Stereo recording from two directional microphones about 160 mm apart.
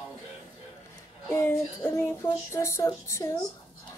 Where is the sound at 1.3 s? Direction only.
15° left (ahead or behind).